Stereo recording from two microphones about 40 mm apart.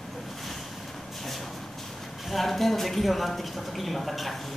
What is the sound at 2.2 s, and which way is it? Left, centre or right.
Speech, centre.